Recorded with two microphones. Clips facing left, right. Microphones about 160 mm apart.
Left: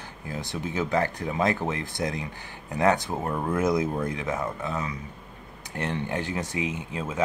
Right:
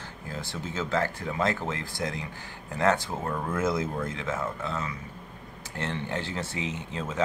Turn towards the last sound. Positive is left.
turn(degrees=10)  # may be behind; listen again after turning